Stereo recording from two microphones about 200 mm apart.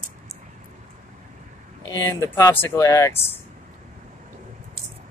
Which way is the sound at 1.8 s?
15° left (ahead or behind).